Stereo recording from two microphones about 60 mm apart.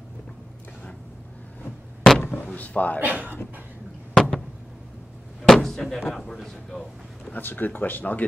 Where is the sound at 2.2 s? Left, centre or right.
Left.